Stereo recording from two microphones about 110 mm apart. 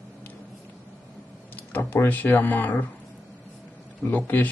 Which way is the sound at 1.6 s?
15° left (ahead or behind).